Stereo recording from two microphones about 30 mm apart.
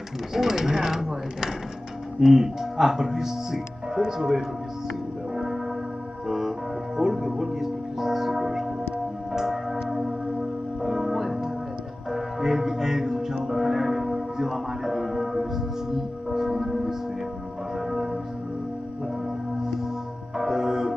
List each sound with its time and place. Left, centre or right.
0.3 s speech: centre
5.3 s music: centre
9.3 s church bell: centre
10.8 s music: centre
20.3 s music: centre